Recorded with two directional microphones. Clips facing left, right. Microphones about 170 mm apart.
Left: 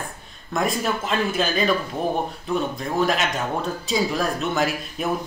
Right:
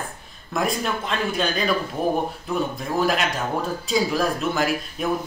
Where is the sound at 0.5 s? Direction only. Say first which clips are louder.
Left 1 dB; centre (ahead or behind).